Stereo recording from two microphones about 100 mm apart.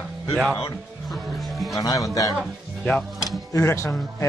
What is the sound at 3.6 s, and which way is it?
Speech, 25° left (ahead or behind).